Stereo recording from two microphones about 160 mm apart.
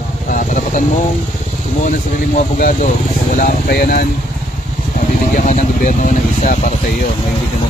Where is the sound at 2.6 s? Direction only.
55° left (ahead or behind); by 4.0 s 70° left (ahead or behind).